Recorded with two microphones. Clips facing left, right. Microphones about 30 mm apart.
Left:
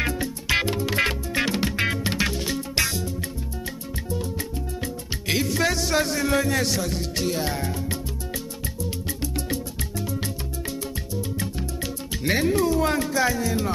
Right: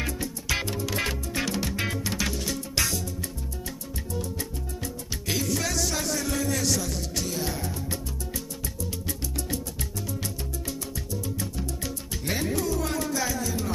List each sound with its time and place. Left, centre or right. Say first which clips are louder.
0.0 s music: left 5 dB; left
5.3 s music: left 5 dB; left
9.2 s music: left 6 dB; left